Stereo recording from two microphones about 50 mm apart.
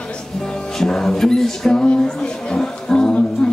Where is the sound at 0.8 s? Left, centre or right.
Centre.